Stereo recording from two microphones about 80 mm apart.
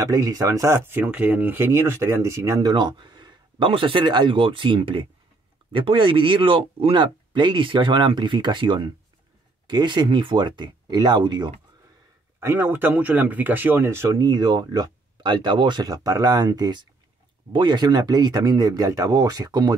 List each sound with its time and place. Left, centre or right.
0.0 s speech: right
1.0 s speech: centre; by 2.6 s right
2.6 s speech: right
9.7 s speech: right
12.4 s speech: right
13.8 s speech: right
14.2 s speech: right
15.9 s speech: right
17.5 s speech: right
18.9 s speech: right